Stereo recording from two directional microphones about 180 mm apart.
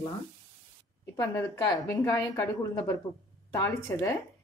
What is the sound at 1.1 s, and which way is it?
A woman's voice, 15° left (ahead or behind).